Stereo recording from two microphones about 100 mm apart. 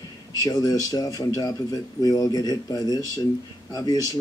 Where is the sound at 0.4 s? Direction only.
35° left (ahead or behind).